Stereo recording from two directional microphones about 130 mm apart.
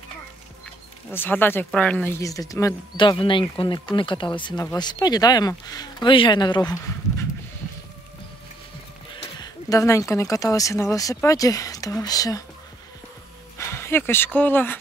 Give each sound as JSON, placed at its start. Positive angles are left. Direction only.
{"t": 1.1, "sound": "speech", "side_deg": 15}
{"t": 2.1, "sound": "speech", "side_deg": 25}
{"t": 3.0, "sound": "speech", "side_deg": 40}
{"t": 9.1, "sound": "speech", "side_deg": 35}
{"t": 13.6, "sound": "speech", "side_deg": 20}